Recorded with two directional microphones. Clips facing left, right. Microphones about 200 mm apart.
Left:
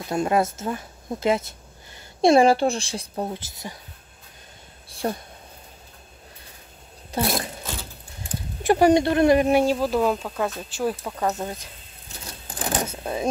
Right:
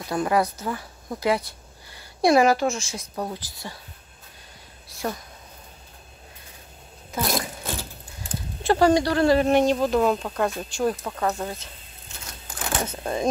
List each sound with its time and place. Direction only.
0.1 s speech: 25° left (ahead or behind)
3.3 s speech: 20° left (ahead or behind)
4.9 s speech: 30° left (ahead or behind)
8.6 s speech: 20° left (ahead or behind)
12.4 s a sound: 35° left (ahead or behind)
13.0 s speech: 5° left (ahead or behind)